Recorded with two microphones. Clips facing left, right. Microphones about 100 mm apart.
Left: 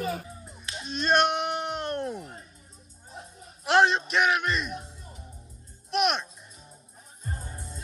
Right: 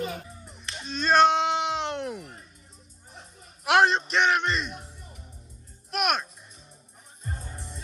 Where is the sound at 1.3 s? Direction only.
90° right.